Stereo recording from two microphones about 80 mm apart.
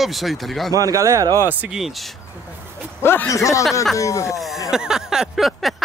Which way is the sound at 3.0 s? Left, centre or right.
Left.